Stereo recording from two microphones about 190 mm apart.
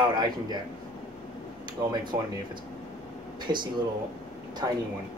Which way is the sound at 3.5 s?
20° right (ahead or behind).